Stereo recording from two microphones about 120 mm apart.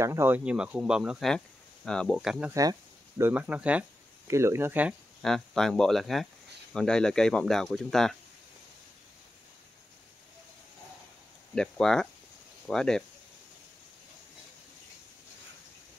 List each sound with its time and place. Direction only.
0.0 s speech: 20° right (ahead or behind)
0.5 s speech: 5° right (ahead or behind)
1.9 s speech: 5° left (ahead or behind)
2.2 s speech: 5° right (ahead or behind)
2.5 s a sound: 30° right (ahead or behind)
3.3 s speech: 10° right (ahead or behind)
4.3 s speech: 25° right (ahead or behind)
5.2 s speech: 5° left (ahead or behind)
11.5 s speech: 5° left (ahead or behind)